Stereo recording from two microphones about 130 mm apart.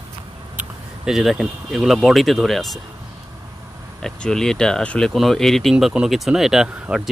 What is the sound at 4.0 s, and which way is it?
Speech, 5° left (ahead or behind).